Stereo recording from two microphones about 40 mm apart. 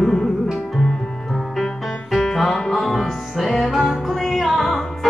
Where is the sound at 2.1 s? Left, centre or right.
Centre.